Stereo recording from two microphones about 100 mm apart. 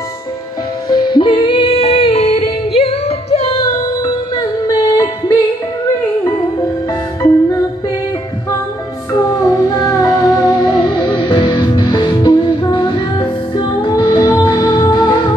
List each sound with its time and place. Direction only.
0.8 s music: 50° left (ahead or behind); by 3.6 s 80° left
4.0 s music: 40° left (ahead or behind)
9.3 s music: 35° left (ahead or behind)